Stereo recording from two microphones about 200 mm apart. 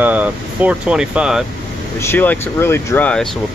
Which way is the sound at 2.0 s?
10° left (ahead or behind).